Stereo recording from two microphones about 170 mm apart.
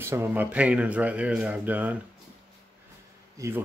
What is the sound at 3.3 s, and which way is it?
Speech, 15° right (ahead or behind).